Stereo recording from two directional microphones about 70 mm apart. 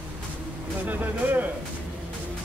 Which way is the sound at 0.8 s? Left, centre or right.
Right.